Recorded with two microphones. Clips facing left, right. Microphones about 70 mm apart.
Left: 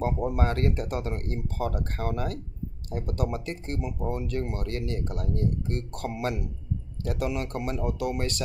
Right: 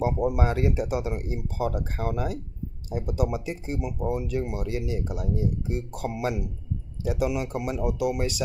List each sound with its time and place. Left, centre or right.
0.0 s speech: centre